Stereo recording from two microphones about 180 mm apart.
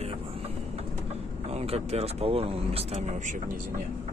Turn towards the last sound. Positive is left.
turn(degrees=-45)  # may be behind; listen again after turning